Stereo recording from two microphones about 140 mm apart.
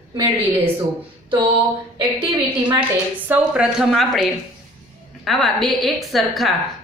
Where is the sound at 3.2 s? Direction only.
10° right (ahead or behind).